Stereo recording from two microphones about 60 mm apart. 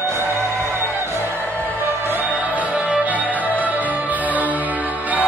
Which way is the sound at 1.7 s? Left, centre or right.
Right.